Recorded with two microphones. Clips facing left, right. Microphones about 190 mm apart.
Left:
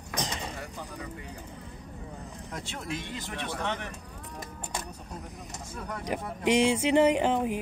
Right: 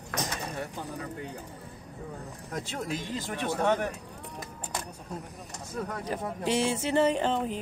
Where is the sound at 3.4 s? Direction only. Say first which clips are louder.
Right 8 dB; 50° right (ahead or behind).